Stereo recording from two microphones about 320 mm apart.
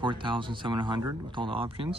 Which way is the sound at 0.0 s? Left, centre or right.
Centre.